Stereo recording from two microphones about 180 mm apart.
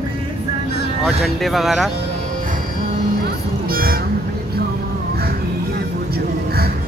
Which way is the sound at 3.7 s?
55° right (ahead or behind).